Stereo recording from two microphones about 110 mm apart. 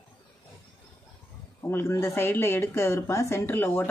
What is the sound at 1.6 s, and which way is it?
Speech, 25° left (ahead or behind).